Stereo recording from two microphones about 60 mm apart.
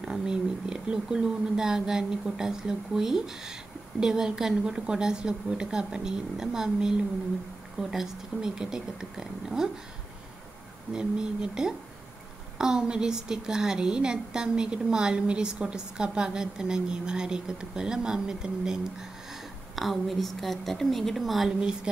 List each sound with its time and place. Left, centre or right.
0.0 s a woman's voice: centre
10.9 s a woman's voice: centre
19.7 s a woman's voice: centre